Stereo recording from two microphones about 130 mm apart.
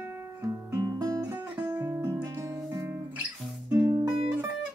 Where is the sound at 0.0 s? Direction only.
20° right (ahead or behind).